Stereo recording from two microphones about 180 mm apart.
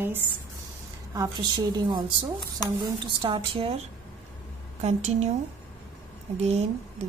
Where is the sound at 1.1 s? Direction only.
20° right (ahead or behind).